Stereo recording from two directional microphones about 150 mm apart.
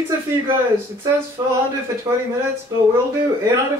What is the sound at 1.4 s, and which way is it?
Speech, 25° right (ahead or behind).